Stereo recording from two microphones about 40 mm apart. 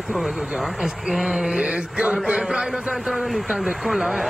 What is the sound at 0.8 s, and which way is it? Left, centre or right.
Speech, centre.